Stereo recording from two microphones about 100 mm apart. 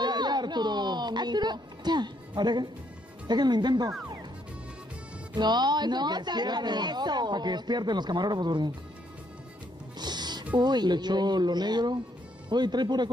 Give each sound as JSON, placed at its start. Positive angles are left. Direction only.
{"t": 0.0, "sound": "music", "side_deg": -45}
{"t": 3.3, "sound": "speech", "side_deg": -45}
{"t": 5.3, "sound": "speech", "side_deg": -45}
{"t": 9.9, "sound": "music", "side_deg": -45}
{"t": 10.6, "sound": "speech", "side_deg": -45}